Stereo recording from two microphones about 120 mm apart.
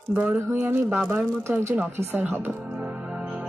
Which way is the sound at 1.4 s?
20° right (ahead or behind).